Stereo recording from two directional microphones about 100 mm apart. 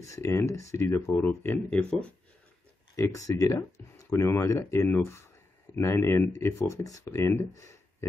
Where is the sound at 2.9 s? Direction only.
30° left (ahead or behind).